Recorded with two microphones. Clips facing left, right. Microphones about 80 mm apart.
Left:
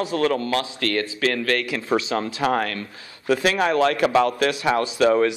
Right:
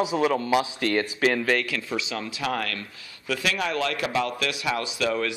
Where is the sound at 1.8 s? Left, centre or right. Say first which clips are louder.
Left 8 dB; left.